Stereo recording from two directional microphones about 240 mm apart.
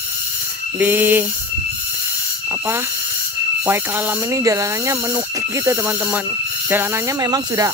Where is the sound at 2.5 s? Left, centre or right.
Centre.